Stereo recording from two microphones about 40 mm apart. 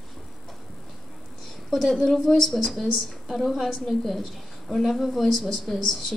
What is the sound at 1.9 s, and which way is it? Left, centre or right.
A woman's voice, centre.